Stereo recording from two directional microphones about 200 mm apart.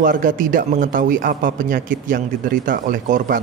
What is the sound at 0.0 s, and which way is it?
Speech, 40° right (ahead or behind).